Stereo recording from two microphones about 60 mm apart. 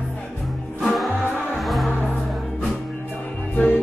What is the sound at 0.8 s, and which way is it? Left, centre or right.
Music, centre.